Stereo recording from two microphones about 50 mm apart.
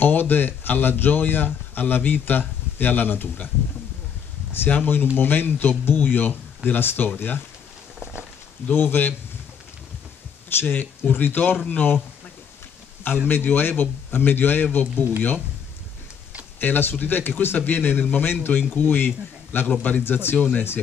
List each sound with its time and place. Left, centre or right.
0.0 s speech: left
4.6 s speech: left
8.6 s speech: left
10.6 s speech: left
13.3 s speech: left
16.5 s speech: left